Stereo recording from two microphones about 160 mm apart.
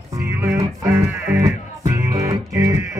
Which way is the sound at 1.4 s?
20° right (ahead or behind).